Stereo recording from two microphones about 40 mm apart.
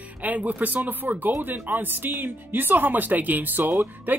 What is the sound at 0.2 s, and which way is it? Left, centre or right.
Speech, right.